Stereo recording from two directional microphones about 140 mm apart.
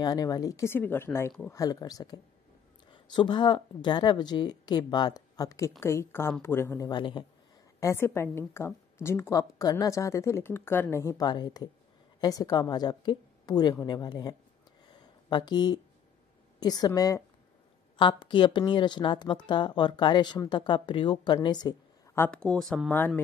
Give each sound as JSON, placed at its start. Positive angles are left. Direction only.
{"t": 0.0, "sound": "a woman's voice", "side_deg": 25}
{"t": 6.9, "sound": "speech", "side_deg": 35}
{"t": 7.8, "sound": "a woman's voice", "side_deg": 20}
{"t": 11.2, "sound": "a woman's voice", "side_deg": 30}
{"t": 14.9, "sound": "a sound", "side_deg": 35}
{"t": 16.5, "sound": "a woman's voice", "side_deg": 30}
{"t": 17.9, "sound": "speech", "side_deg": 35}
{"t": 22.1, "sound": "speech", "side_deg": 10}
{"t": 22.9, "sound": "speech", "side_deg": 15}